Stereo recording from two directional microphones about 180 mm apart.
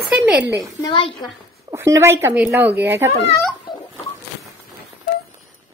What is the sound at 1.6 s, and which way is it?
Speech, 15° right (ahead or behind).